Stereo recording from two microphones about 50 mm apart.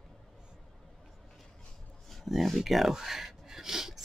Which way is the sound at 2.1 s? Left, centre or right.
Centre.